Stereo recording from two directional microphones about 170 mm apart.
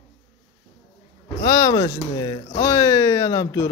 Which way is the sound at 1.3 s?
20° left (ahead or behind).